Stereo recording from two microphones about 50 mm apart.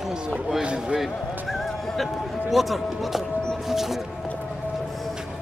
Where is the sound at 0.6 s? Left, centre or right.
Centre.